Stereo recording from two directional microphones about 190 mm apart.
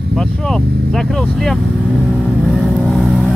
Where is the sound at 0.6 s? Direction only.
55° right (ahead or behind).